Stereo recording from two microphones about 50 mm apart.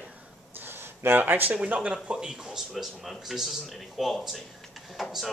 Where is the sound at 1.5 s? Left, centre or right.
Right.